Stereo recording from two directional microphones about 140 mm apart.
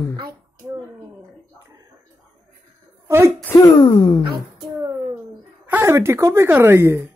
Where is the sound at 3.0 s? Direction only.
15° right (ahead or behind).